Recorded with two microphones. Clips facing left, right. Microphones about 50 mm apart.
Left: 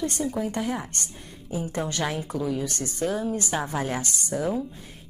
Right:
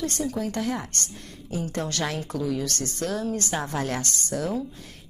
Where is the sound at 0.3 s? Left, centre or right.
Centre.